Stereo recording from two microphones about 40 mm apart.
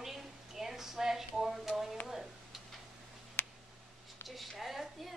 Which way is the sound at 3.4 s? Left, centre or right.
Left.